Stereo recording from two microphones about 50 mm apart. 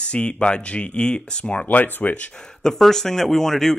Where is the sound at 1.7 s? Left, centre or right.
Left.